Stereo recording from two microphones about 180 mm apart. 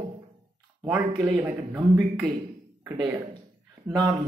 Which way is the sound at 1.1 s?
25° right (ahead or behind).